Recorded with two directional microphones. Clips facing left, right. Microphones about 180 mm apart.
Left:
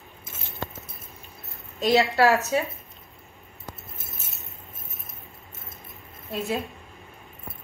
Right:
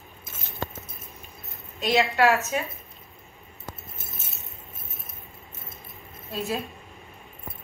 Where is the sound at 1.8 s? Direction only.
40° left (ahead or behind).